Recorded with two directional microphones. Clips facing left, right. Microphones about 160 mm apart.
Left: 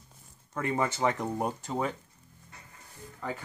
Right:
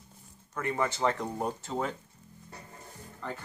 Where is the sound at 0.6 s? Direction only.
20° left (ahead or behind).